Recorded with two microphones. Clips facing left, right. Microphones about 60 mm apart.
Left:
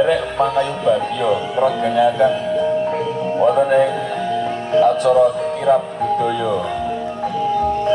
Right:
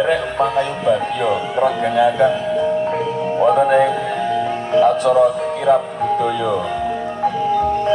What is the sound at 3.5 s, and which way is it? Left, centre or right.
Music, right.